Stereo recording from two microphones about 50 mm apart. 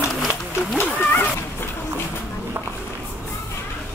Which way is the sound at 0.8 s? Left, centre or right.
Left.